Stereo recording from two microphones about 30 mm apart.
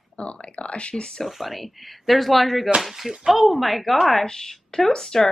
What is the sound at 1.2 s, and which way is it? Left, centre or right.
A woman's voice, centre.